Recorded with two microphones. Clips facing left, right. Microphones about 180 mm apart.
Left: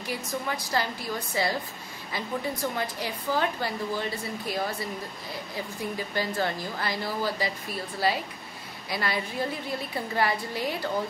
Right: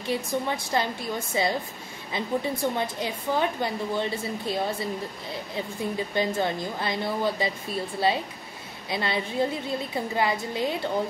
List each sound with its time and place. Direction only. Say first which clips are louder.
0.0 s a woman's voice: right 5 dB; 25° right (ahead or behind)
5.9 s a woman's voice: right 3 dB; 20° right (ahead or behind)